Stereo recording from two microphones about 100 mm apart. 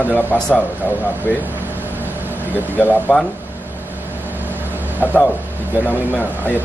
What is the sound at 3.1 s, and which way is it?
Speech, centre (ahead or behind).